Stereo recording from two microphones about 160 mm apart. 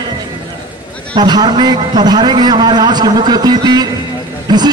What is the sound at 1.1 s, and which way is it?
A man's voice, 25° right (ahead or behind).